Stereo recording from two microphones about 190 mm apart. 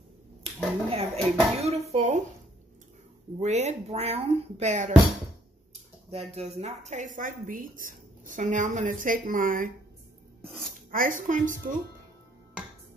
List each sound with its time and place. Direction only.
0.8 s speech: 30° right (ahead or behind)
3.3 s speech: 35° right (ahead or behind)
6.0 s a woman's voice: 30° right (ahead or behind)
10.9 s a woman's voice: 45° right (ahead or behind)